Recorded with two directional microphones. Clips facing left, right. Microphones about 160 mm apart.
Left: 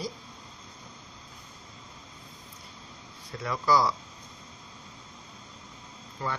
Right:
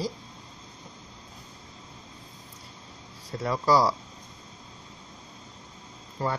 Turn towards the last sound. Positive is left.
turn(degrees=-40)  # may be behind; listen again after turning